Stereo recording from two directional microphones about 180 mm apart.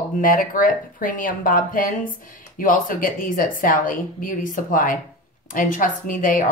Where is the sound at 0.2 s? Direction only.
50° left (ahead or behind).